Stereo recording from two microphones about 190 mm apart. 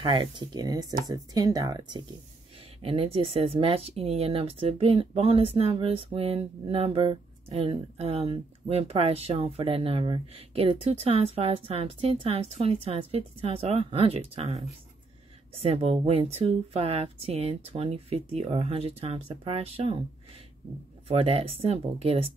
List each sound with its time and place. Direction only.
0.0 s speech: 25° right (ahead or behind)
21.1 s speech: 30° right (ahead or behind)